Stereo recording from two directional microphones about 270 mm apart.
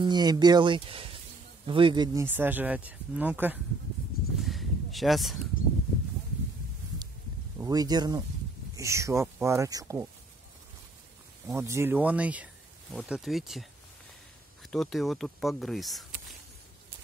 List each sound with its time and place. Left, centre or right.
0.0 s speech: centre
4.4 s a sound: centre
7.5 s speech: centre
11.4 s speech: centre